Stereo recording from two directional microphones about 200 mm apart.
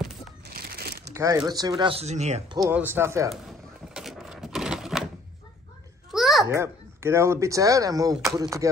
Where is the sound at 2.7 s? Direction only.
10° right (ahead or behind).